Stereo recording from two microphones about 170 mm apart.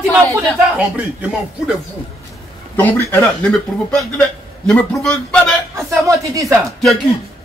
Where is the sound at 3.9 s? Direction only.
5° left (ahead or behind).